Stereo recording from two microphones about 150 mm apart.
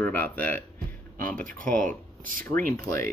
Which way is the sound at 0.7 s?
70° right (ahead or behind).